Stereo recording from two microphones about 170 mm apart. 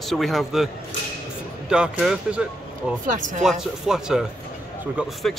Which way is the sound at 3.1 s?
50° right (ahead or behind).